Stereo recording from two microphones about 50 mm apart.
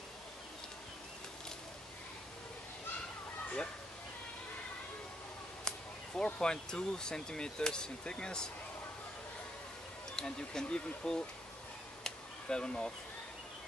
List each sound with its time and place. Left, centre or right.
5.7 s speech: centre
10.1 s speech: centre
12.0 s a sound: centre